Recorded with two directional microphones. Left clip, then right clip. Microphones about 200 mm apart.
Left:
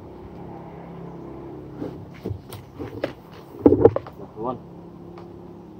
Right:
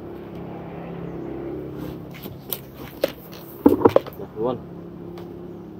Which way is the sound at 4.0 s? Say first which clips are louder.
Right 10 dB; 30° right (ahead or behind).